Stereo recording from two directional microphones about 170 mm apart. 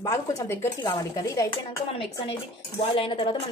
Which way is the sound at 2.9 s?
35° left (ahead or behind).